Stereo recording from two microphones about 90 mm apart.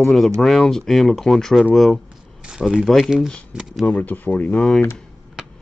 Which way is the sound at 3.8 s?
20° left (ahead or behind).